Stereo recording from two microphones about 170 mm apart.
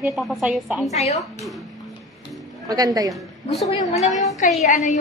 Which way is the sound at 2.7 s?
20° right (ahead or behind).